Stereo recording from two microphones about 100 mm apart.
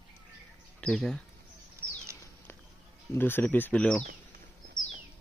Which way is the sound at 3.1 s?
20° left (ahead or behind).